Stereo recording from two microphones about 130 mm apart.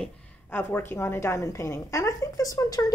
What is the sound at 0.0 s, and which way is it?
A woman's voice, 10° left (ahead or behind).